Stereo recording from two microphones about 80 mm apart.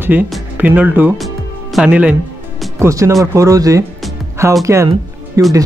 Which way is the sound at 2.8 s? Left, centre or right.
Right.